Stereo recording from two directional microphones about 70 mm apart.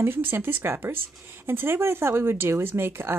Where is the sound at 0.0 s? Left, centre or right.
Right.